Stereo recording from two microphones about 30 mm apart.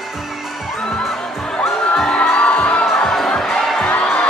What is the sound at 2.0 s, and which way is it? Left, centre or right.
Crowd, left.